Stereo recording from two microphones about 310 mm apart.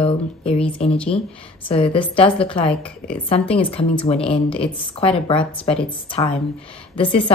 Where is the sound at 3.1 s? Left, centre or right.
Centre.